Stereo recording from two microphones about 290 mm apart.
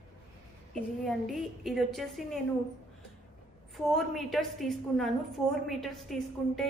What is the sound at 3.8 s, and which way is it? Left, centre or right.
A woman's voice, centre.